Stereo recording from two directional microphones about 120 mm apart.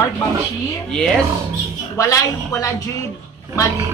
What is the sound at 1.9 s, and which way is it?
Speech, 25° left (ahead or behind).